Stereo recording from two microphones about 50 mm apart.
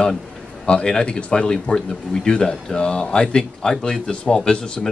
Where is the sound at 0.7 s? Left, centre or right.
Centre.